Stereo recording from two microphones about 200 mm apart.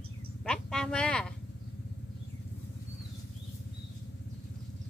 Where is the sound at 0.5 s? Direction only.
5° left (ahead or behind).